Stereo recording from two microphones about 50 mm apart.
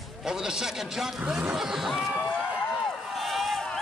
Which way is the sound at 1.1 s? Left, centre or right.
Right.